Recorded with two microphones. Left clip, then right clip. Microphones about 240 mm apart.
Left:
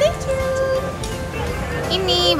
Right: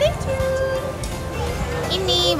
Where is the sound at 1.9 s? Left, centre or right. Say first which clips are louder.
Left 2 dB; centre.